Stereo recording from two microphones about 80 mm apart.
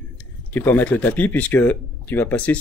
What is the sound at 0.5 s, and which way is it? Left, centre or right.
Speech, left.